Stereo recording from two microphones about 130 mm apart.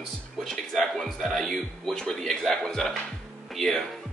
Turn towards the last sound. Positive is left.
turn(degrees=0)  # may be behind; listen again after turning